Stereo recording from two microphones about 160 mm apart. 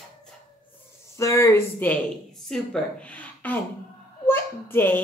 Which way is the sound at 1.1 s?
20° left (ahead or behind).